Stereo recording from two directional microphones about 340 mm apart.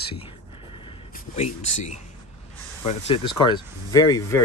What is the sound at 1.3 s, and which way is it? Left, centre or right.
Speech, centre.